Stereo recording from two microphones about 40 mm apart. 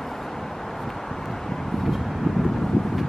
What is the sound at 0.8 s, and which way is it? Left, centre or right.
Vehicle, centre.